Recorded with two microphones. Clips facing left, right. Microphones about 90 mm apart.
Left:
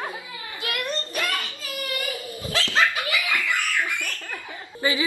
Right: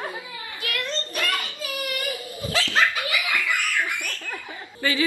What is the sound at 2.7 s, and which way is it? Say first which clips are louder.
Laughter: left 1 dB; 20° right (ahead or behind).